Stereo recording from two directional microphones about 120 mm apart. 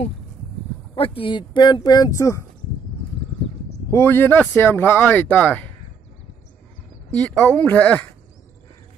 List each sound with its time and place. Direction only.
0.9 s speech: 50° left (ahead or behind); by 2.4 s 25° left (ahead or behind)
3.9 s speech: 20° left (ahead or behind)
7.2 s speech: 10° left (ahead or behind)